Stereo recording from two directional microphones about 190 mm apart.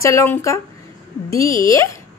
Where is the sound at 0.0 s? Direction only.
15° left (ahead or behind).